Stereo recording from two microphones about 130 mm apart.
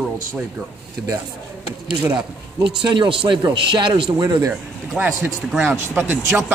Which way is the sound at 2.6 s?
40° right (ahead or behind).